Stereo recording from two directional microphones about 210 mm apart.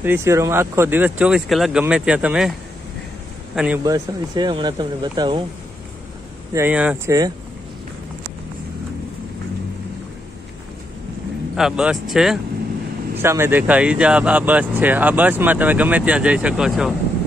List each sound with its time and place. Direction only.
0.0 s speech: 10° right (ahead or behind)
3.5 s speech: 5° right (ahead or behind)
6.5 s speech: 10° right (ahead or behind)
11.5 s speech: 5° right (ahead or behind)